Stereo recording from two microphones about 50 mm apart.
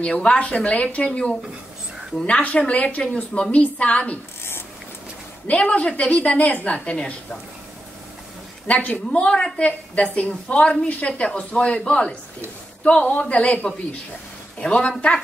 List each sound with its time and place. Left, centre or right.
0.0 s a woman's voice: left
5.5 s speech: left
8.6 s speech: left